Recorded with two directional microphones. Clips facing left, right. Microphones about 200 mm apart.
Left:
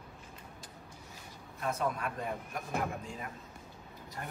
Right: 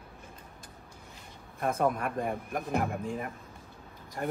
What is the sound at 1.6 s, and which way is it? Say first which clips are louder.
Speech: right 6 dB; 50° right (ahead or behind).